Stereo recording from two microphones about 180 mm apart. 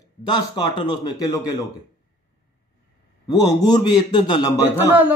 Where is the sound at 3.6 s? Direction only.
25° left (ahead or behind).